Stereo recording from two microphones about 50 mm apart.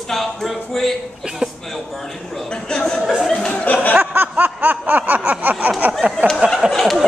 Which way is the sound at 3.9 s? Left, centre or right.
Right.